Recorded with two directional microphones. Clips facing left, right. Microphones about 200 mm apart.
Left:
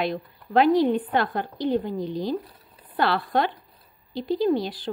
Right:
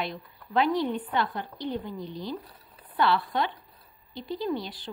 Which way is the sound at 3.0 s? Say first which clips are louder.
Left 3 dB; 90° left.